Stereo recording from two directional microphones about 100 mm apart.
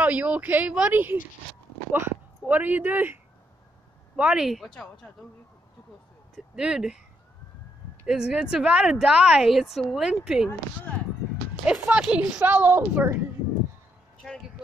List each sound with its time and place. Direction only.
0.0 s speech: 15° right (ahead or behind)
4.2 s speech: 10° right (ahead or behind)
6.3 s speech: 5° right (ahead or behind)
8.1 s speech: 5° right (ahead or behind)
11.6 s speech: 10° right (ahead or behind)
14.2 s a sound: 5° left (ahead or behind)